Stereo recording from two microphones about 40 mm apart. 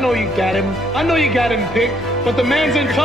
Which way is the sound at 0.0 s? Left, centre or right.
Centre.